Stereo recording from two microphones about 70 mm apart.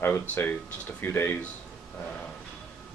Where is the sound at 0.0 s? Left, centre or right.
Left.